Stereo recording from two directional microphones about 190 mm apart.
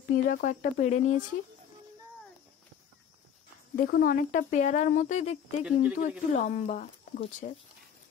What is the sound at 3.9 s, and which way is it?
Speech, 50° left (ahead or behind).